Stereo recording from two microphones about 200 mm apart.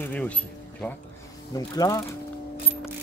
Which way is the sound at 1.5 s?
20° left (ahead or behind).